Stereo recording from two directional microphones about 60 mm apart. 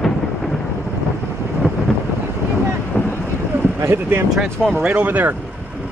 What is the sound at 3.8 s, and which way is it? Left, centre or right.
Speech, right.